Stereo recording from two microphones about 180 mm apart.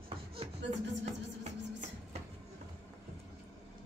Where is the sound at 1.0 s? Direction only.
40° right (ahead or behind).